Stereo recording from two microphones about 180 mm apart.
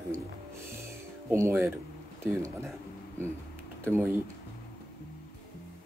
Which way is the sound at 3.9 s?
15° right (ahead or behind).